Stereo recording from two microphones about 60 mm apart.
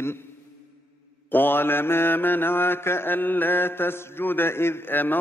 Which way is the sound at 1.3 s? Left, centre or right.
Left.